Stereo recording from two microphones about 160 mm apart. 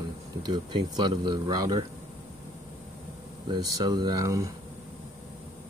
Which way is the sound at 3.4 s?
25° right (ahead or behind).